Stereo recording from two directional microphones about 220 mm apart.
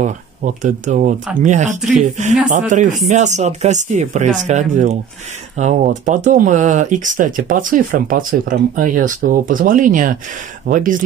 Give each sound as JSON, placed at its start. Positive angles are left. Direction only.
{"t": 0.0, "sound": "speech", "side_deg": -35}